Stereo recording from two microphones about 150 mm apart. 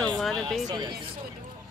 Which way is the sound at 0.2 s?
Centre (ahead or behind).